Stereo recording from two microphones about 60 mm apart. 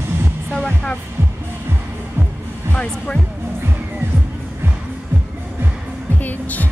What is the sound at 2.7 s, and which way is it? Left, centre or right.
Speech, centre.